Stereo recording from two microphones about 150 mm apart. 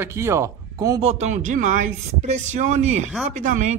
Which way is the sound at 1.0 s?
45° right (ahead or behind).